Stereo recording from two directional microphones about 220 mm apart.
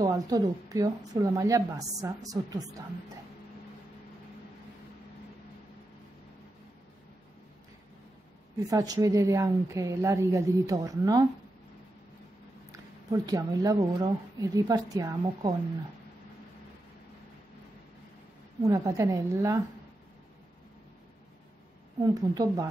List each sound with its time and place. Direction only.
0.0 s speech: 15° right (ahead or behind)
8.6 s speech: 15° right (ahead or behind)
12.7 s speech: 15° right (ahead or behind)
18.7 s speech: 15° right (ahead or behind)
22.0 s speech: 15° right (ahead or behind)